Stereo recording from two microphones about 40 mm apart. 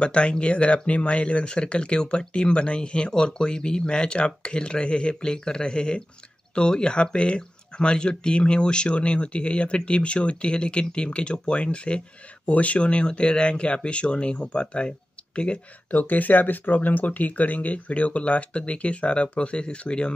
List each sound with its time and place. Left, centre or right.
0.0 s speech: left
15.9 s speech: left